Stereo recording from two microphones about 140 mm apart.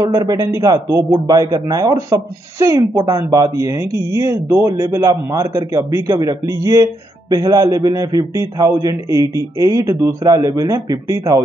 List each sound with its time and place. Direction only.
0.0 s a man's voice: 25° right (ahead or behind)